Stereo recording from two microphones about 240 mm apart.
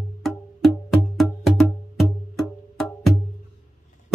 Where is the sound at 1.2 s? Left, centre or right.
Centre.